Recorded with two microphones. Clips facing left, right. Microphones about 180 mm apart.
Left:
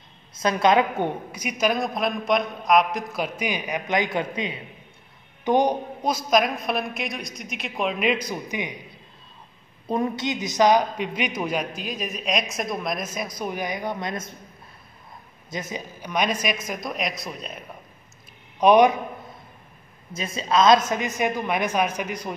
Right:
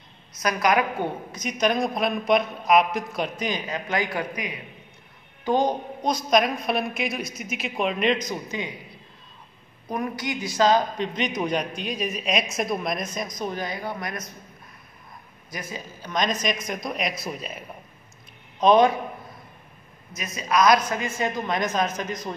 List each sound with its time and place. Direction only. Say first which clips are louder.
0.3 s a woman's voice: left 3 dB; 25° left (ahead or behind)
1.3 s a woman's voice: right 3 dB; 10° left (ahead or behind)
6.0 s a woman's voice: even; 5° left (ahead or behind)
9.8 s a woman's voice: left 4 dB; 25° left (ahead or behind)
15.5 s a woman's voice: left 3 dB; 20° left (ahead or behind); by 17.6 s 5° right (ahead or behind)
18.6 s a woman's voice: left 2 dB; 15° left (ahead or behind)
20.2 s a woman's voice: left 1 dB; 30° left (ahead or behind); by 22.3 s 10° left (ahead or behind)